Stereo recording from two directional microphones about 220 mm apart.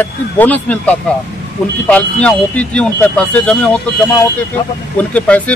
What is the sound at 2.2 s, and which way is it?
Speech, 5° left (ahead or behind).